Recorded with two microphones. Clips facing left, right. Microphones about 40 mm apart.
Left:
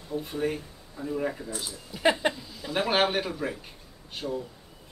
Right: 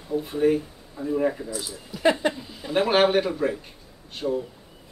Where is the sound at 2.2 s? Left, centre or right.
Centre.